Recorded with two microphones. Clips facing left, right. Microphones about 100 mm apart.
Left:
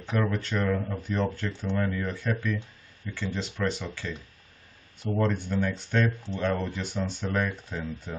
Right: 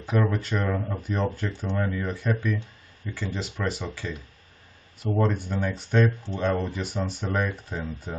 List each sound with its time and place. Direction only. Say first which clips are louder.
0.0 s speech: right 3 dB; 10° right (ahead or behind)
5.3 s speech: even; 10° right (ahead or behind)
6.0 s speech: right 3 dB; 25° right (ahead or behind)
6.4 s speech: right 2 dB; 10° right (ahead or behind)